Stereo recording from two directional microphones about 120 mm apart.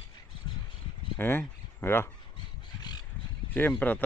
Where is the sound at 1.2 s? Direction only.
15° left (ahead or behind).